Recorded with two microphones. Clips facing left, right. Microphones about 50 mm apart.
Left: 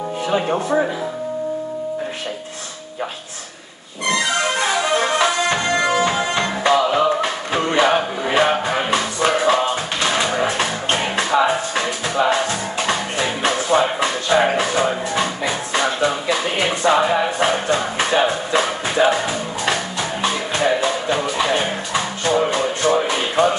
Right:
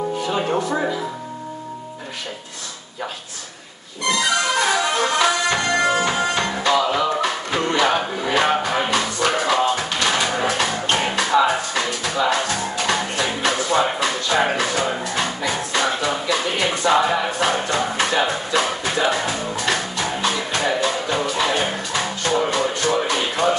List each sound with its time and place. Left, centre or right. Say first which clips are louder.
4.0 s music: left 1 dB; left
20.2 s music: left 3 dB; left